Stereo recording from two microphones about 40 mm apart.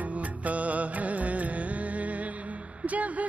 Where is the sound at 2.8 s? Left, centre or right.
Right.